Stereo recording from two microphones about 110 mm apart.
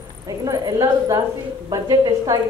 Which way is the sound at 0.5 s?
35° right (ahead or behind).